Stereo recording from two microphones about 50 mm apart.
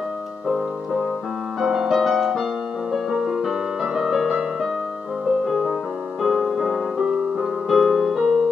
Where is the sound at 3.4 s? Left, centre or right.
Centre.